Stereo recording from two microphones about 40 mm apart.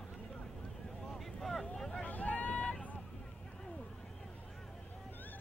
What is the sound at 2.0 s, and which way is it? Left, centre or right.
Vehicle, left.